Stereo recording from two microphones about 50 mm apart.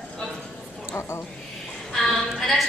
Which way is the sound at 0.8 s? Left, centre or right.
Left.